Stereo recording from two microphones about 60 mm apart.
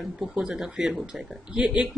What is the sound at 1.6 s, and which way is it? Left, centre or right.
Speech, right.